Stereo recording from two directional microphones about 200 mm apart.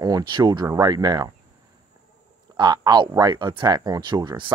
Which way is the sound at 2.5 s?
20° right (ahead or behind).